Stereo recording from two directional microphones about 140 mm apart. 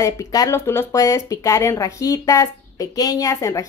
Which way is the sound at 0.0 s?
25° left (ahead or behind).